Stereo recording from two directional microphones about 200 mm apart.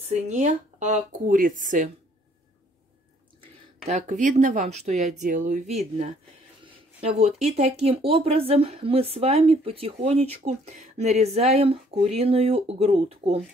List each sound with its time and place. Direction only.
0.0 s speech: 35° right (ahead or behind)
3.8 s speech: 35° right (ahead or behind)
6.6 s a sound: 30° right (ahead or behind)
7.4 s speech: 35° right (ahead or behind)